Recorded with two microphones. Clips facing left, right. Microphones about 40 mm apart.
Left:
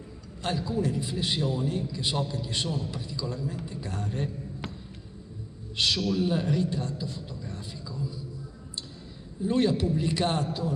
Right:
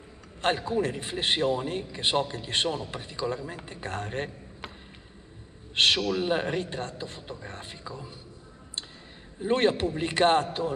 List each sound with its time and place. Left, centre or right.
0.4 s a man's voice: right
5.8 s a man's voice: right
9.4 s a man's voice: right